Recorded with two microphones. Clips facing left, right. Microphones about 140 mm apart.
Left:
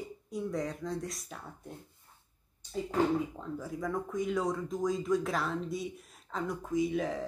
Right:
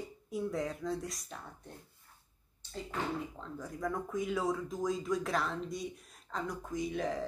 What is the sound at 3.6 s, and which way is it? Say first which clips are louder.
Speech: left 1 dB; centre (ahead or behind).